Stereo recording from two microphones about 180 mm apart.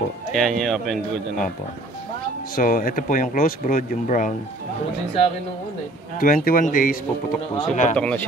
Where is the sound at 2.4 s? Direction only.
50° left (ahead or behind).